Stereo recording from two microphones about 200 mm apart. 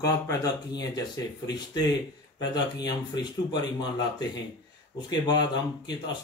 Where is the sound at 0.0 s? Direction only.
15° left (ahead or behind).